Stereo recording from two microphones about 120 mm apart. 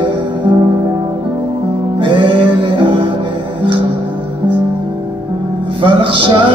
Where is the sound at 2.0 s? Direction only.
45° right (ahead or behind).